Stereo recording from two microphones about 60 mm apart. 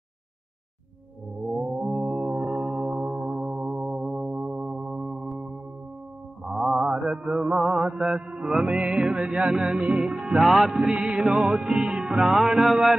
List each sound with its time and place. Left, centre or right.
1.6 s music: centre
4.3 s a sound: centre
6.4 s mantra: centre
6.8 s mantra: centre
8.3 s music: centre
12.3 s music: centre